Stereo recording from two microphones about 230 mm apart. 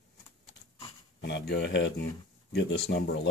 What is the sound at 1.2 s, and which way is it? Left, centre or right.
Speech, left.